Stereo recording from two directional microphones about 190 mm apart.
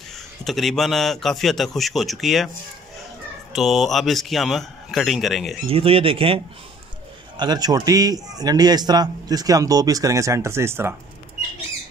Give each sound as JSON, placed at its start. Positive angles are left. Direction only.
{"t": 0.5, "sound": "a man's voice", "side_deg": 0}
{"t": 3.5, "sound": "a man's voice", "side_deg": 0}
{"t": 5.7, "sound": "a man's voice", "side_deg": -30}